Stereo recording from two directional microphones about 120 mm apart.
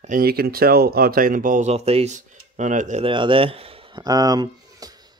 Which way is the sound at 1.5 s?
65° right (ahead or behind).